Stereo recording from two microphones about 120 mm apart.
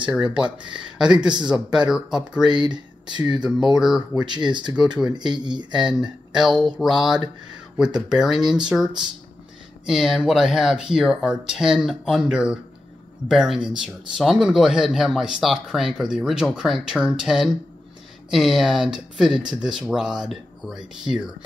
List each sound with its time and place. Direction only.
0.0 s speech: 10° right (ahead or behind)
1.1 s speech: 40° right (ahead or behind)
1.5 s speech: 5° right (ahead or behind)
2.4 s speech: 40° right (ahead or behind)
3.7 s speech: 5° right (ahead or behind)
4.5 s speech: 40° right (ahead or behind)
6.5 s speech: 5° right (ahead or behind)